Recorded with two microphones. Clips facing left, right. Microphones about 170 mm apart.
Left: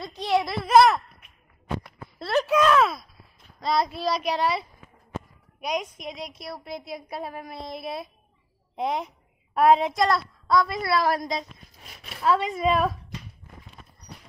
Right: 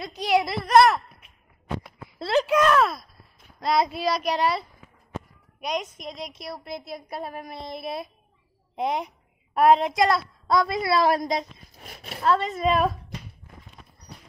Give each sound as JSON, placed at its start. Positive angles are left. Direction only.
{"t": 0.0, "sound": "a woman's voice", "side_deg": 0}
{"t": 2.1, "sound": "a woman's voice", "side_deg": -5}
{"t": 10.5, "sound": "a woman's voice", "side_deg": -20}
{"t": 11.8, "sound": "a sound", "side_deg": -45}
{"t": 12.2, "sound": "a woman's voice", "side_deg": 10}